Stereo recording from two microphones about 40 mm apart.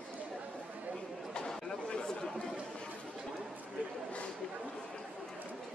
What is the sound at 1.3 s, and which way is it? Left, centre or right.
Chatter, left.